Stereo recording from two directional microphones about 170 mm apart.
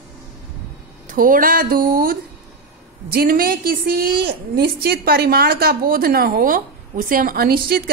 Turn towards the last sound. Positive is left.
turn(degrees=-60)  # may be behind; listen again after turning